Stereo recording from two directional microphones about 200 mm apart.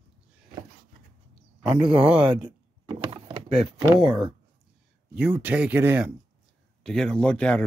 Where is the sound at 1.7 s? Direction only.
25° right (ahead or behind).